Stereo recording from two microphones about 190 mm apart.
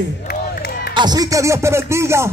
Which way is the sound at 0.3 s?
55° left (ahead or behind).